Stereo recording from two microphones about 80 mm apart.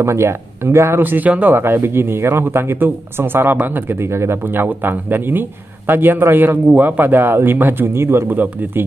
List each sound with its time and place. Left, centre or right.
0.0 s speech: right